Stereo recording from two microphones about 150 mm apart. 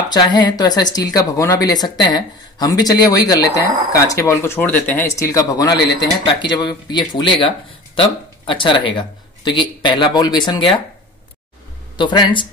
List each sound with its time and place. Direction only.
0.1 s speech: 30° left (ahead or behind)
12.0 s speech: 30° left (ahead or behind)